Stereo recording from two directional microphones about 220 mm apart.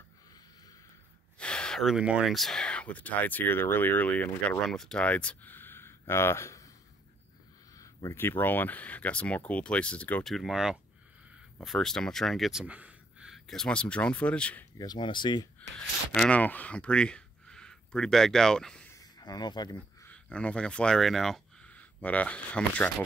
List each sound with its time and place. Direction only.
1.4 s speech: 5° left (ahead or behind)
7.7 s speech: 15° left (ahead or behind)
14.8 s speech: 20° left (ahead or behind)
15.7 s speech: 5° left (ahead or behind)
18.9 s a sound: 15° left (ahead or behind)
20.1 s speech: 5° left (ahead or behind)